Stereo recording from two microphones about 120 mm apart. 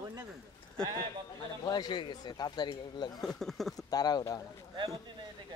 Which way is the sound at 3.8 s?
35° left (ahead or behind).